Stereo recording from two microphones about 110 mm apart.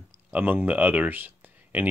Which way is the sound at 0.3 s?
15° right (ahead or behind).